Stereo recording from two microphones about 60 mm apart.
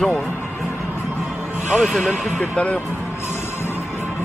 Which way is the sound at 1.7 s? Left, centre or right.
Centre.